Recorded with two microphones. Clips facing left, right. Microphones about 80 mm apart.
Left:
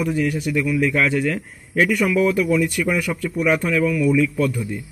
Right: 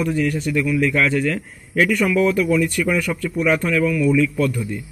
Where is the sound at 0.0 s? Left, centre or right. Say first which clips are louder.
Right 1 dB; centre.